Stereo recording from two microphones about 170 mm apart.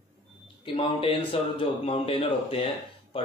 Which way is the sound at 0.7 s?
30° left (ahead or behind).